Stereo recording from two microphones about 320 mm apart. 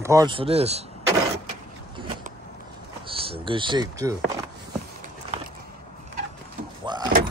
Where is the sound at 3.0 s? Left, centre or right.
Centre.